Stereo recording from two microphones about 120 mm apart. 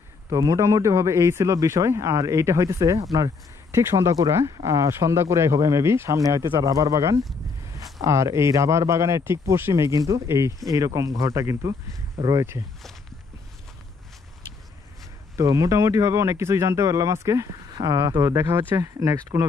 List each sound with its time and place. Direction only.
0.3 s a man's voice: 30° right (ahead or behind)
15.3 s a man's voice: 25° right (ahead or behind)
18.3 s a man's voice: 25° right (ahead or behind)